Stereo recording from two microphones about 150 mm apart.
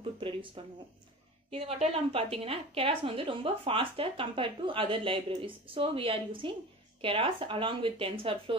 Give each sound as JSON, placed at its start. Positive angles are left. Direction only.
{"t": 0.2, "sound": "a woman's voice", "side_deg": -35}